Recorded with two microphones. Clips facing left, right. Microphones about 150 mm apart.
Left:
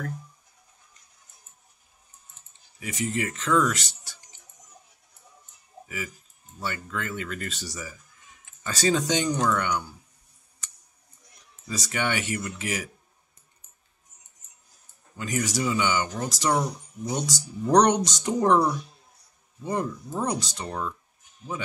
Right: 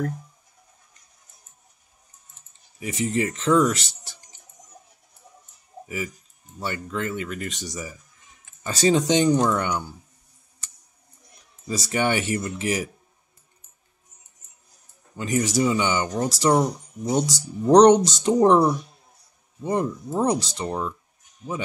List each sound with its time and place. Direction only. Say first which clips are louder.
2.8 s speech: right 5 dB; 30° right (ahead or behind)
5.9 s speech: right 5 dB; 25° right (ahead or behind)
11.6 s speech: right 5 dB; 30° right (ahead or behind)
15.1 s speech: right 6 dB; 25° right (ahead or behind)
16.1 s speech: right 6 dB; 40° right (ahead or behind)
16.4 s speech: right 5 dB; 25° right (ahead or behind)